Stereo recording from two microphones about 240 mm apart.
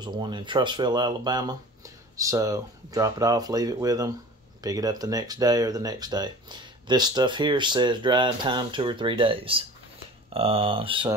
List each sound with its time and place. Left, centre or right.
0.0 s speech: centre